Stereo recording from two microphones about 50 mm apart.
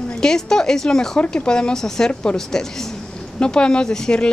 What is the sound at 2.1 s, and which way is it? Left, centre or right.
Speech, left.